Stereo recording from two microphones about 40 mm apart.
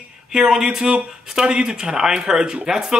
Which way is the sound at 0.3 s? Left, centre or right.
Centre.